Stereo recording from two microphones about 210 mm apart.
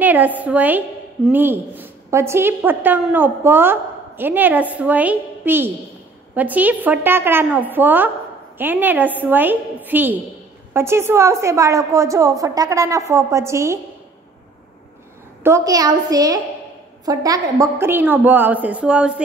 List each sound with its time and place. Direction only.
0.0 s a woman's voice: 10° right (ahead or behind)
15.4 s a woman's voice: 15° right (ahead or behind)